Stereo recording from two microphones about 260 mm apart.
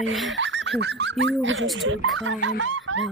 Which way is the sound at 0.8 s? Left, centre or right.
Right.